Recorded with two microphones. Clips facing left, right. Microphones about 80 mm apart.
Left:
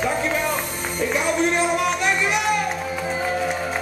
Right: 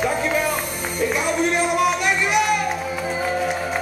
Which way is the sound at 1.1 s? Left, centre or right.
Centre.